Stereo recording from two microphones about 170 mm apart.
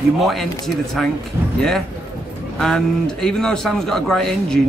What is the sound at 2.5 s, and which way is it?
Speech, 5° left (ahead or behind).